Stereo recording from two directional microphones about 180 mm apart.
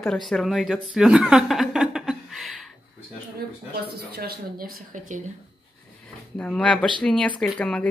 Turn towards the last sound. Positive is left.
turn(degrees=5)  # may be behind; listen again after turning